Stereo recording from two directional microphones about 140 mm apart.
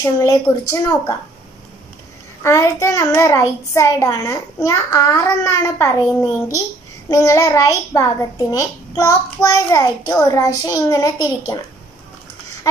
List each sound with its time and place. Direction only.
0.0 s a child's voice: 20° left (ahead or behind)
2.4 s a child's voice: 20° left (ahead or behind)
7.1 s a child's voice: 25° left (ahead or behind)